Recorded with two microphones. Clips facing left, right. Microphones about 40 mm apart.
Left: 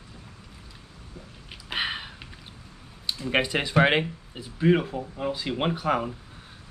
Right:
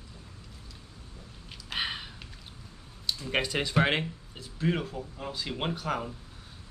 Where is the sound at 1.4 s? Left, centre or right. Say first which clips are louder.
Left 4 dB; centre.